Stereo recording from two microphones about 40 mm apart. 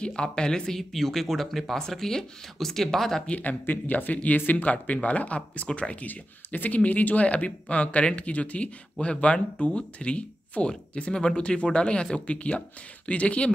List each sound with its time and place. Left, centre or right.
0.0 s speech: left
3.3 s speech: left
6.0 s speech: left